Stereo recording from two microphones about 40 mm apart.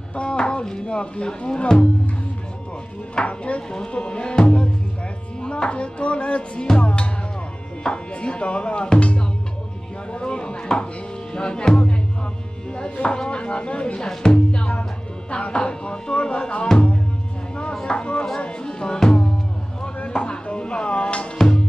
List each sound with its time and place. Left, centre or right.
0.1 s speech: left
3.3 s chopping: left
3.7 s speech: left
9.0 s chopping: left
10.1 s speech: left
13.0 s speech: left
17.7 s a sound: left
18.4 s music: left
21.4 s music: centre